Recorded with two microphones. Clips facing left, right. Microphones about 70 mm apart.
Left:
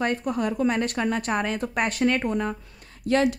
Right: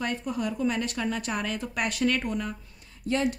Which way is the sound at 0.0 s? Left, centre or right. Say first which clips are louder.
Left 5 dB; left.